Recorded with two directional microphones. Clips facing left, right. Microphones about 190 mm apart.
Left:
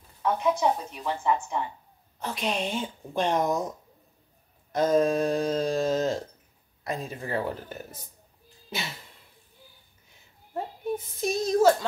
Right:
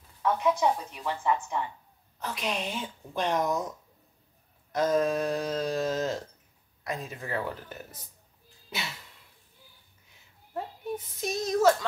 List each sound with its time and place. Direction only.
0.2 s a woman's voice: 15° left (ahead or behind)
2.1 s speech: 25° left (ahead or behind)
4.7 s speech: 25° left (ahead or behind)
8.6 s a sound: 30° left (ahead or behind)
11.2 s speech: 30° left (ahead or behind)